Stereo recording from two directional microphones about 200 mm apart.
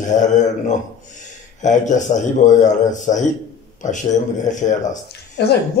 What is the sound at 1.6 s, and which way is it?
A man's voice, 40° left (ahead or behind).